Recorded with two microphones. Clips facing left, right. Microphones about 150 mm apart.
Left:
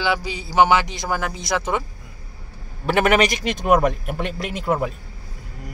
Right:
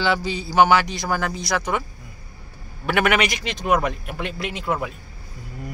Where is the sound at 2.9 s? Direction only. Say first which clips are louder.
Left 3 dB; 35° left (ahead or behind).